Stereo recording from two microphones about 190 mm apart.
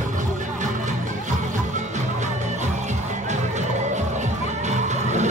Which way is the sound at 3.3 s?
40° right (ahead or behind).